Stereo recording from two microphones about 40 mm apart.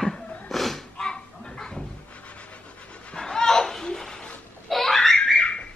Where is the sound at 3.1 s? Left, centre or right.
Centre.